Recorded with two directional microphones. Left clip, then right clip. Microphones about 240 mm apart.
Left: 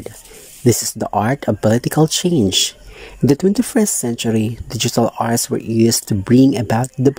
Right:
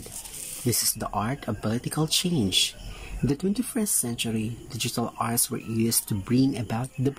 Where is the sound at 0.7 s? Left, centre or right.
Left.